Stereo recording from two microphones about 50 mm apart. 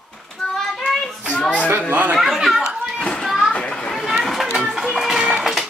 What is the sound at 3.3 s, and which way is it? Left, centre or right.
Children playing, centre.